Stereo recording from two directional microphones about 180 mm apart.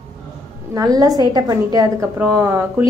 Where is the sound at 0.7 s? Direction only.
20° right (ahead or behind).